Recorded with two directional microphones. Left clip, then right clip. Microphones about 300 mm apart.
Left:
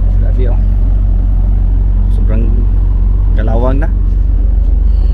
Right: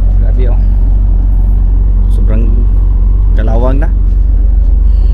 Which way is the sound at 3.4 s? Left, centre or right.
Centre.